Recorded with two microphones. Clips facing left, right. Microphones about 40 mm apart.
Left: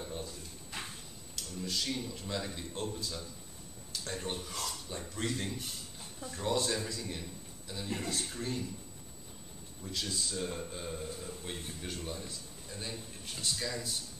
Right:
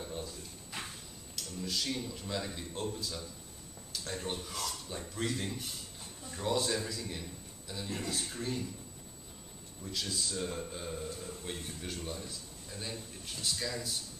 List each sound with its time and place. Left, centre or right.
0.0 s drawer open or close: centre
3.9 s a man's voice: centre
9.8 s a man's voice: centre